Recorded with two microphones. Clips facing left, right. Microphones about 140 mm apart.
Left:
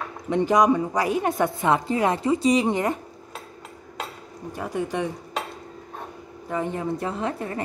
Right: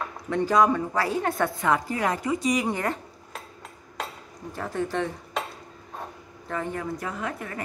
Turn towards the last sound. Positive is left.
turn(degrees=30)  # may be behind; listen again after turning